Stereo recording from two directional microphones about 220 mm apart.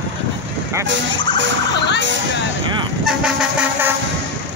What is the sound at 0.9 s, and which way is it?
Vehicle, 55° right (ahead or behind).